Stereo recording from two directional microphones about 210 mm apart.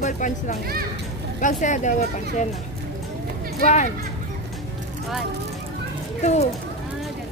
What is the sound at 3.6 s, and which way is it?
Speech, 35° left (ahead or behind).